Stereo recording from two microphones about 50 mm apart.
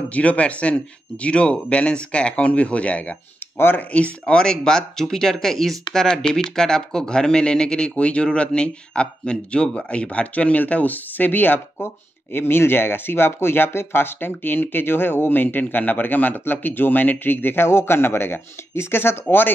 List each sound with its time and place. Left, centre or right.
0.1 s speech: left
3.5 s speech: left
3.9 s speech: left
17.6 s speech: left
19.2 s speech: left